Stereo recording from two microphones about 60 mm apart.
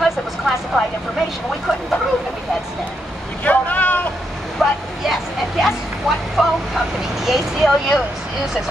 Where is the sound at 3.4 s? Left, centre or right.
Left.